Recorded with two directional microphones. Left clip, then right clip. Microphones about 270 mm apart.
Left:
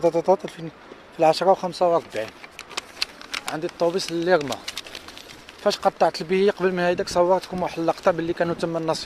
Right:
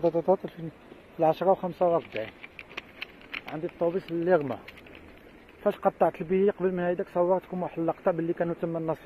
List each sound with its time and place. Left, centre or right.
0.0 s speech: centre
2.7 s a sound: centre
3.7 s speech: left